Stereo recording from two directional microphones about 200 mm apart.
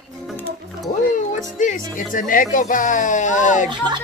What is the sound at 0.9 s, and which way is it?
Music, 35° left (ahead or behind).